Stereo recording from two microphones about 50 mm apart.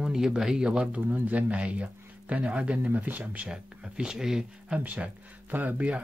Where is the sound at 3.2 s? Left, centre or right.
Right.